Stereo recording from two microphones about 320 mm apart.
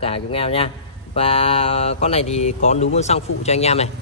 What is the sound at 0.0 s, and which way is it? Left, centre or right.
A man's voice, centre.